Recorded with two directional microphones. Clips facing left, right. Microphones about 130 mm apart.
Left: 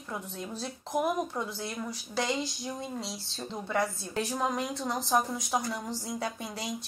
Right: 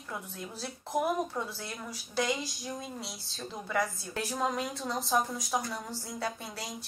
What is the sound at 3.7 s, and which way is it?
A woman's voice, 20° left (ahead or behind).